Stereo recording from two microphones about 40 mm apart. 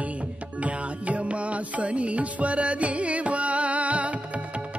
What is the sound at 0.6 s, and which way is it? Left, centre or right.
Music, right.